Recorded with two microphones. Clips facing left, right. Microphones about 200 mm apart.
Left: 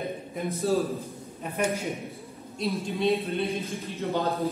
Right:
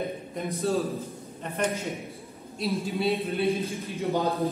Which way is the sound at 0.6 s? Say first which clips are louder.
Left 1 dB; centre (ahead or behind).